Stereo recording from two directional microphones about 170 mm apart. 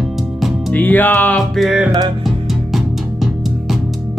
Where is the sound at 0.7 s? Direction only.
10° left (ahead or behind).